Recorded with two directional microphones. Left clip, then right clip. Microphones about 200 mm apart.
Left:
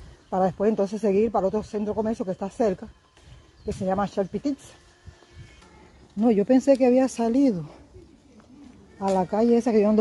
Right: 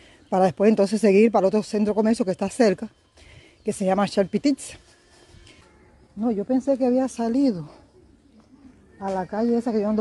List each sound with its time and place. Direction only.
0.3 s speech: 65° right (ahead or behind)
6.1 s speech: 15° left (ahead or behind); by 7.6 s 15° right (ahead or behind)
9.1 s speech: centre (ahead or behind)